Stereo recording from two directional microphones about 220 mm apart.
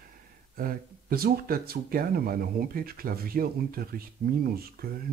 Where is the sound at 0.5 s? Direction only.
40° right (ahead or behind).